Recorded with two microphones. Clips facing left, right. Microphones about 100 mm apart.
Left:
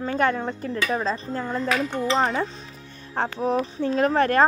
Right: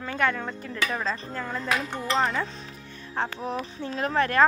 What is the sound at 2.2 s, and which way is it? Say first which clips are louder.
Speech: left 3 dB; 30° left (ahead or behind).